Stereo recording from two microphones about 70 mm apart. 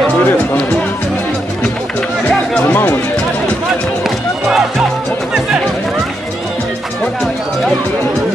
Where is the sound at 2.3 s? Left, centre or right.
Centre.